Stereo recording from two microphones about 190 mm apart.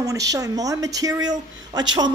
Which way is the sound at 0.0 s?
15° right (ahead or behind).